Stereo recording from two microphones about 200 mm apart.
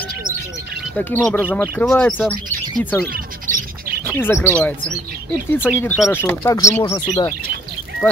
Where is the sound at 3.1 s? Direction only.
45° right (ahead or behind).